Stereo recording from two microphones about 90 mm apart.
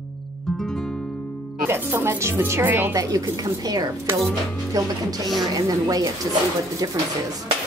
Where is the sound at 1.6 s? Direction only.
25° right (ahead or behind).